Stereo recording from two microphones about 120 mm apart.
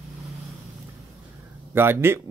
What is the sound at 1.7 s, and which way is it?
Speech, 20° right (ahead or behind).